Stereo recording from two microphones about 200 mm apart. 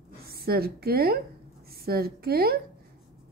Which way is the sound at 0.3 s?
50° right (ahead or behind).